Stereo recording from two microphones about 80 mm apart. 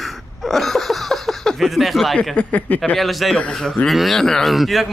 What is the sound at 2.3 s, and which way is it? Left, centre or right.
Speech, centre.